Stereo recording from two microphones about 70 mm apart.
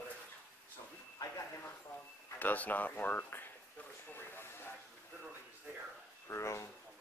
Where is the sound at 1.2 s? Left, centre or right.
Left.